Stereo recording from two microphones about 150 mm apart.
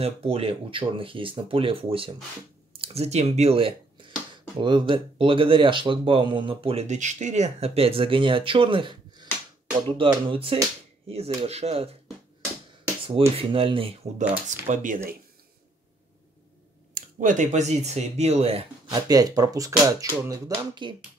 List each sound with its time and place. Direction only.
0.0 s speech: 40° right (ahead or behind)
13.4 s speech: 35° right (ahead or behind)
14.7 s speech: 60° right (ahead or behind)
16.9 s speech: 60° right (ahead or behind); by 18.6 s 45° right (ahead or behind)
18.9 s speech: 25° right (ahead or behind)